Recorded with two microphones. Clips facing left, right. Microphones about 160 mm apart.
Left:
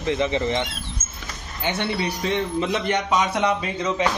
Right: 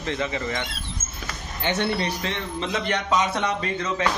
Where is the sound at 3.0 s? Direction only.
10° left (ahead or behind).